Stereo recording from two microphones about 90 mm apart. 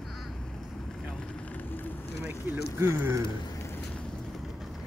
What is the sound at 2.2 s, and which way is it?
Speech, 25° right (ahead or behind).